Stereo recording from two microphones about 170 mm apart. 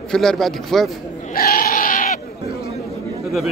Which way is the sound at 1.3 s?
60° left (ahead or behind).